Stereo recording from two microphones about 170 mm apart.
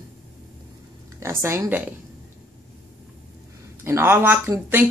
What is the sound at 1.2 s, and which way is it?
Speech, 15° right (ahead or behind).